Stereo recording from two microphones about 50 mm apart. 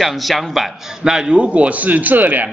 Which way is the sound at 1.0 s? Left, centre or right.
Centre.